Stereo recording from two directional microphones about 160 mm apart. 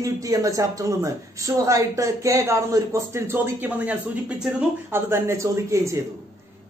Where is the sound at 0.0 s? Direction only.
20° right (ahead or behind).